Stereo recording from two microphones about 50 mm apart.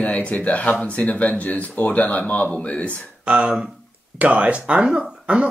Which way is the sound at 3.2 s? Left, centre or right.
Right.